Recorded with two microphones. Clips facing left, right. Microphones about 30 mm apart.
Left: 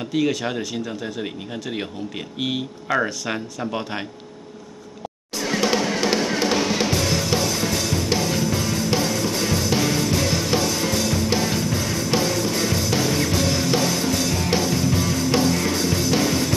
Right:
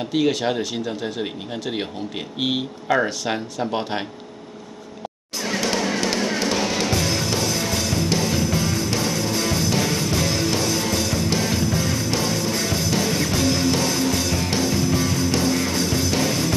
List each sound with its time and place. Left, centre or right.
0.5 s speech: centre
0.8 s speech: right
1.7 s speech: right
2.9 s speech: centre
5.4 s music: centre
12.1 s music: centre